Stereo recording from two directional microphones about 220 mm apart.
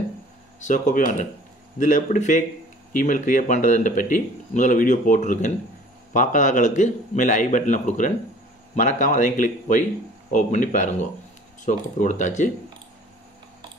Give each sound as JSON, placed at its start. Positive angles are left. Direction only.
{"t": 0.6, "sound": "speech", "side_deg": 35}